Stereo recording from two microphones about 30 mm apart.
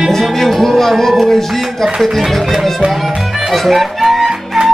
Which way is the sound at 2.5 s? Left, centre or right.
Centre.